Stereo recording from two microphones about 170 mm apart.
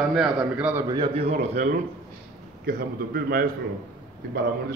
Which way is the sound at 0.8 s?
25° right (ahead or behind).